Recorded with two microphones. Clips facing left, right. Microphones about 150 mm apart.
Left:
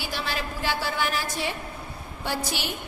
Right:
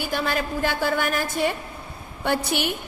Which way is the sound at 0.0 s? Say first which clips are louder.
Right 6 dB; 55° right (ahead or behind).